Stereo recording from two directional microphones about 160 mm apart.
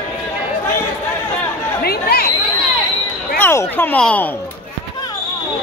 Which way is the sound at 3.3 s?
15° left (ahead or behind).